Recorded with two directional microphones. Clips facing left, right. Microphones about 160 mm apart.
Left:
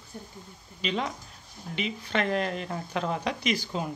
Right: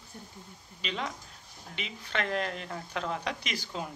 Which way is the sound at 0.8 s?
15° left (ahead or behind).